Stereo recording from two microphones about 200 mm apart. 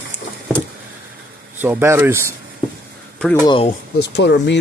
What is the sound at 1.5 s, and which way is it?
Speech, 10° right (ahead or behind).